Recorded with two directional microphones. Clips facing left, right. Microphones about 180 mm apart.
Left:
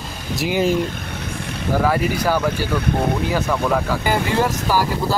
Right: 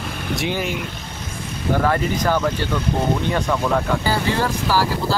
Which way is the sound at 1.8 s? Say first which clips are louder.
Left 2 dB; 10° left (ahead or behind).